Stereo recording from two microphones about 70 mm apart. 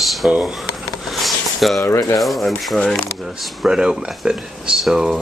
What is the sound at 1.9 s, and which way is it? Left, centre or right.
Speech, left.